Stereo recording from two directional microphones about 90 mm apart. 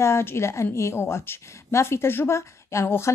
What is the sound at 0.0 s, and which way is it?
A woman's voice, 30° left (ahead or behind).